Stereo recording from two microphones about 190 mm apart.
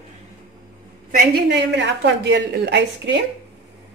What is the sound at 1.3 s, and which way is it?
A woman's voice, 65° right (ahead or behind).